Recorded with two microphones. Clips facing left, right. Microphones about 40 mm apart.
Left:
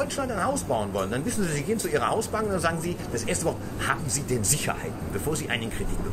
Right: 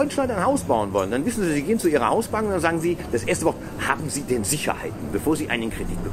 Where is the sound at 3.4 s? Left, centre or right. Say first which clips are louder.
Right 5 dB; centre.